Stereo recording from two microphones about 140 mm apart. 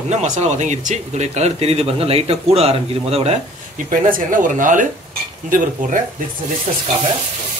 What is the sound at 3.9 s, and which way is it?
Speech, 75° right (ahead or behind).